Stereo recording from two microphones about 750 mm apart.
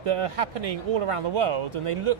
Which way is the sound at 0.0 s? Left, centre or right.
Right.